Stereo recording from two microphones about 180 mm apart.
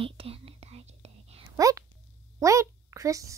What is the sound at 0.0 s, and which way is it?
Whispering, 30° right (ahead or behind).